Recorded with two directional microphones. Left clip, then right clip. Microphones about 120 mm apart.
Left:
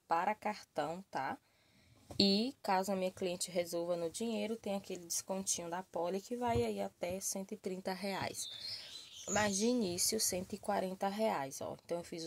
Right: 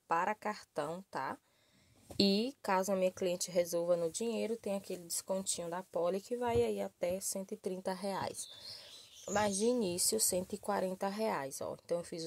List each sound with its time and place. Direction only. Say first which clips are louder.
0.1 s speech: right 1 dB; 25° right (ahead or behind)
2.1 s speech: even; 35° right (ahead or behind)